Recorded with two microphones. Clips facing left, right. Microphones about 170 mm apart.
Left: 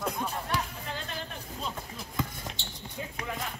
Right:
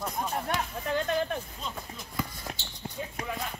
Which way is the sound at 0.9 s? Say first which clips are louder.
Right 10 dB; 55° right (ahead or behind).